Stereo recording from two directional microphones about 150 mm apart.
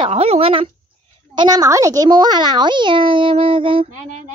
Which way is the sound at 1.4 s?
25° right (ahead or behind).